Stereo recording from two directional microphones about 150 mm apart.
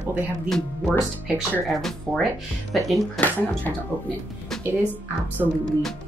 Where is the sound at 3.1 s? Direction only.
10° left (ahead or behind).